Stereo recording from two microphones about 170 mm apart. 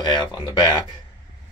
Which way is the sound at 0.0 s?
25° left (ahead or behind).